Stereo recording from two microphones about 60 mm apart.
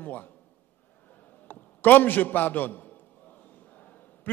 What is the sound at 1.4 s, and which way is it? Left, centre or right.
A man's voice, left.